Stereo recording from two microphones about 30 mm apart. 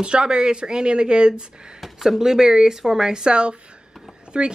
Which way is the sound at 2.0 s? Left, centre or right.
Centre.